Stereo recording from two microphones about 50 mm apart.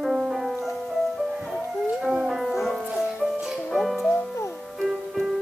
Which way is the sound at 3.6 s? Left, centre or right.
Centre.